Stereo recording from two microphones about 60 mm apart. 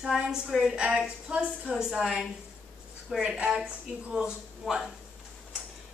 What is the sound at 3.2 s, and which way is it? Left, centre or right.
A woman's voice, centre.